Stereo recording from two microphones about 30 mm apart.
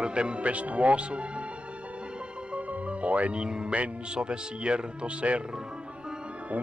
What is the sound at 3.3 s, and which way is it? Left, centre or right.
A man's voice, right.